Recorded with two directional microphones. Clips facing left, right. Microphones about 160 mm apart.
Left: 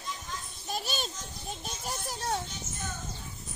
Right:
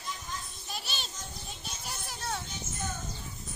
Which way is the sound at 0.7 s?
45° left (ahead or behind).